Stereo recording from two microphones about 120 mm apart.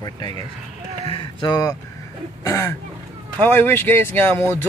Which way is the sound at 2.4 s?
25° left (ahead or behind).